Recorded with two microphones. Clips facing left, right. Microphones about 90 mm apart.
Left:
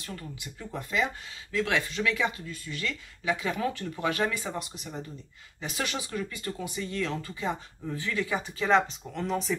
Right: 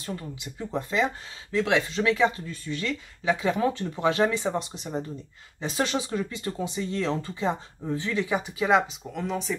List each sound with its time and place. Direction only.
0.0 s speech: 25° right (ahead or behind); by 9.6 s centre (ahead or behind)